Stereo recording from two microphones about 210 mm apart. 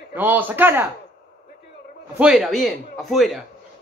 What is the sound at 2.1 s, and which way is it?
A man's voice, 5° right (ahead or behind).